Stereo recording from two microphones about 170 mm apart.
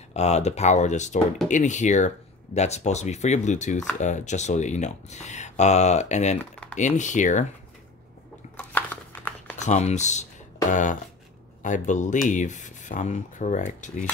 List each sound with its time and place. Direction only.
0.1 s speech: 40° left (ahead or behind)
8.5 s a sound: 10° left (ahead or behind)
9.6 s speech: 40° left (ahead or behind)